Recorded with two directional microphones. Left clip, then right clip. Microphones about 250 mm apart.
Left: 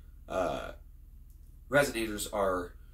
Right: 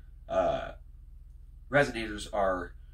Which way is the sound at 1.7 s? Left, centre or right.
Left.